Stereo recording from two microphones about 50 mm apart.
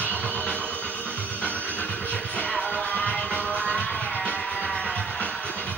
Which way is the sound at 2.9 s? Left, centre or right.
Left.